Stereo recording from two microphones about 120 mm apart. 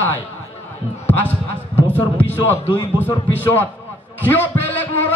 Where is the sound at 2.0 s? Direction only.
15° left (ahead or behind).